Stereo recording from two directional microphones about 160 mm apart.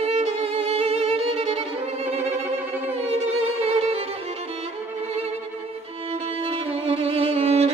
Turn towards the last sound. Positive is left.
turn(degrees=-40)  # may be behind; listen again after turning